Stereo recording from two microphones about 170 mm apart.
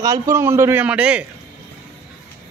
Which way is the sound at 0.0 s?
20° right (ahead or behind).